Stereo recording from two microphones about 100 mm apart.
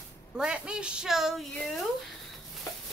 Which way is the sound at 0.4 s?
10° right (ahead or behind).